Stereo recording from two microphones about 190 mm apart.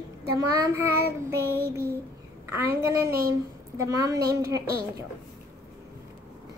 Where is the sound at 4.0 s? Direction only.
20° right (ahead or behind).